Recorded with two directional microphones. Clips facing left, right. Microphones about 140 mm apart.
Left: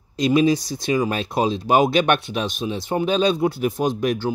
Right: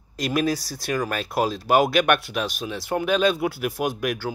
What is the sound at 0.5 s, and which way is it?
Speech, 20° left (ahead or behind).